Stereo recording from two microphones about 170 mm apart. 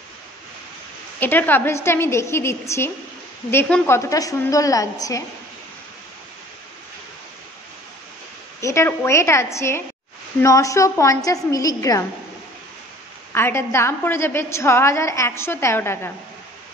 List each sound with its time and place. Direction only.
1.2 s a woman's voice: 10° left (ahead or behind)
8.5 s a woman's voice: 15° left (ahead or behind)
13.3 s a woman's voice: 15° left (ahead or behind)